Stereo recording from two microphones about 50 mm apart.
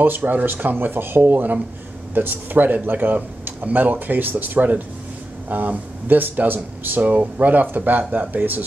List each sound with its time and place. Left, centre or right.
0.0 s speech: right